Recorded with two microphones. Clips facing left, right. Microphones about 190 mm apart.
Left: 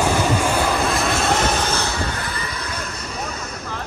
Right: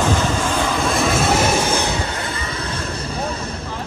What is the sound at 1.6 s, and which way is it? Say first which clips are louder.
Vehicle: right 3 dB; 15° right (ahead or behind).